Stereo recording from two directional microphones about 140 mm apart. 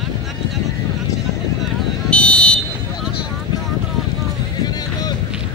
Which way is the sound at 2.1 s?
10° left (ahead or behind).